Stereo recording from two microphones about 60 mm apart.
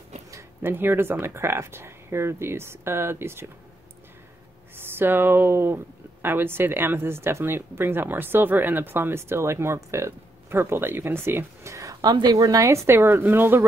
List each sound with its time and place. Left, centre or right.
0.3 s a sound: right
0.7 s speech: right
4.7 s speech: right
11.7 s a woman's voice: right
12.8 s speech: right